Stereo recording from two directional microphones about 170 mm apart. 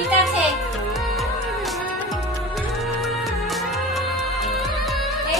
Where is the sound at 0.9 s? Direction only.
Centre (ahead or behind).